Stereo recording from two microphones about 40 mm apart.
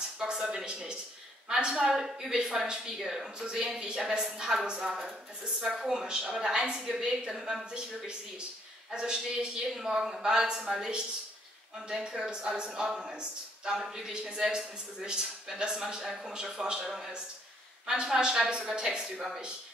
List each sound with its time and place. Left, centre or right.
0.2 s a woman's voice: centre
8.9 s a woman's voice: right
17.8 s a woman's voice: right